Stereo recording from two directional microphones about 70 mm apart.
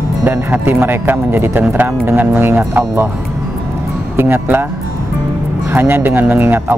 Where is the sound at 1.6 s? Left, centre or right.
Right.